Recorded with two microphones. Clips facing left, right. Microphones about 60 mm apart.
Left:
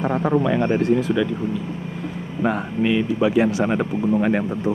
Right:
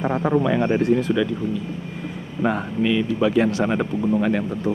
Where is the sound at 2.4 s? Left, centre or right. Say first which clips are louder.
Even; centre.